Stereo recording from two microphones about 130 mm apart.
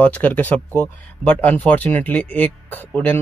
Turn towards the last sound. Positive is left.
turn(degrees=10)  # may be behind; listen again after turning